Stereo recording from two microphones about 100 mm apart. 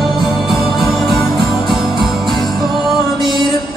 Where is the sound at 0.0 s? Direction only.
Centre (ahead or behind).